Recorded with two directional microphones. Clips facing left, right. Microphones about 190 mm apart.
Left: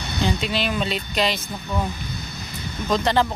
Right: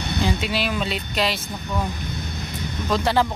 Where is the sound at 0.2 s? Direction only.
5° right (ahead or behind).